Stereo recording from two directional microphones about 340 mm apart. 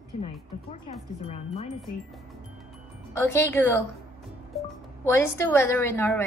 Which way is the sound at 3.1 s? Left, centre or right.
Centre.